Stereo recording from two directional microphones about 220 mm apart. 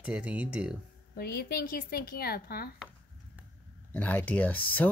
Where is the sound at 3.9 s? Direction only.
10° left (ahead or behind).